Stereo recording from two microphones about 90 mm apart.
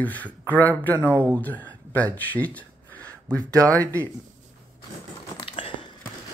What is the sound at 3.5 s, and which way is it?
Speech, 40° right (ahead or behind).